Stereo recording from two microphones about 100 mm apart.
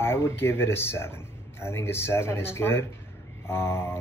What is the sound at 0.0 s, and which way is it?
Speech, 25° left (ahead or behind).